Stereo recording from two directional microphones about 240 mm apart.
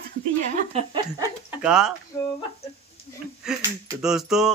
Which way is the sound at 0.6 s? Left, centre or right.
Right.